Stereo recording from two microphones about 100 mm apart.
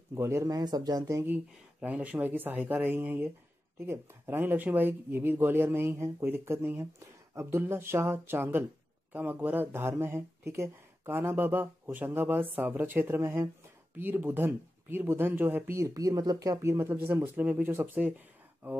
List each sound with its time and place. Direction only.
0.1 s speech: 30° right (ahead or behind)
1.3 s speech: 15° right (ahead or behind)